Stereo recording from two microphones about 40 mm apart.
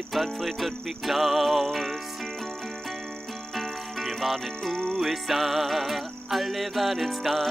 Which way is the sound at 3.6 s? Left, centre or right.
Centre.